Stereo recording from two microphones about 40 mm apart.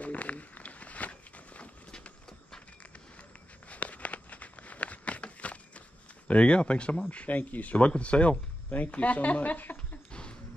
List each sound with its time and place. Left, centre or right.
0.0 s walk: left
3.6 s a sound: left
6.2 s speech: left